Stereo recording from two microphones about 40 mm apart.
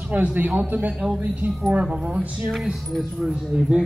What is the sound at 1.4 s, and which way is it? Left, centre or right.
Speech, right.